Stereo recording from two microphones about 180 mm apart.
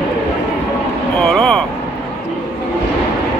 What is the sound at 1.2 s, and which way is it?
Speech, centre (ahead or behind).